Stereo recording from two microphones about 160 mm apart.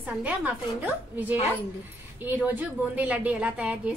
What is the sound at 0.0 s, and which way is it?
A woman's voice, 10° right (ahead or behind).